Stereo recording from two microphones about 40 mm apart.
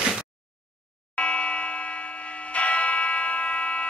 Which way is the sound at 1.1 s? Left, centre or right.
Left.